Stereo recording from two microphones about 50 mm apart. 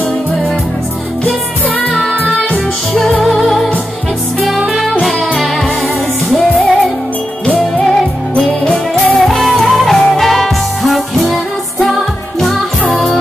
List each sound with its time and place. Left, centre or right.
2.5 s music: centre
5.0 s music: centre
8.4 s music: centre
9.1 s music: centre